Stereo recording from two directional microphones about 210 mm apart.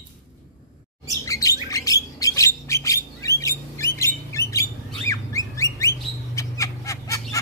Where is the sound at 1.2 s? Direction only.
15° left (ahead or behind).